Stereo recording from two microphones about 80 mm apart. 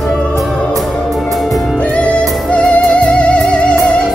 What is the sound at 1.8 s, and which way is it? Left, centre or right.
Music, centre.